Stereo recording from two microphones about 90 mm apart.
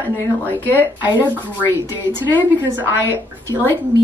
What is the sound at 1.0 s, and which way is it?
Speech, 20° right (ahead or behind).